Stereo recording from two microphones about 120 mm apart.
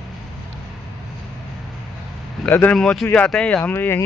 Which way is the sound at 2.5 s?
15° left (ahead or behind).